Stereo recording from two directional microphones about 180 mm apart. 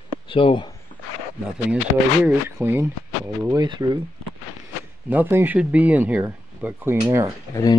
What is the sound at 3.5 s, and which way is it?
Speech, 25° right (ahead or behind).